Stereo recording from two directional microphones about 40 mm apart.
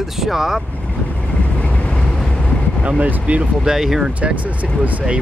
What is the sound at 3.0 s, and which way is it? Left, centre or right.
Speech, right.